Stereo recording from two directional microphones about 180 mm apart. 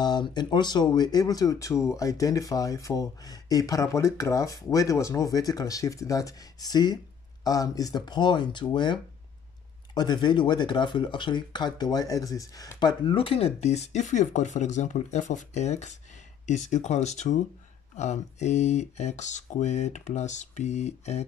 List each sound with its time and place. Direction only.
0.0 s speech: 25° left (ahead or behind)